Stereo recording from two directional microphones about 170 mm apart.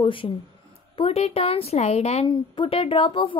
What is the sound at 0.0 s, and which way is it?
Speech, 30° left (ahead or behind).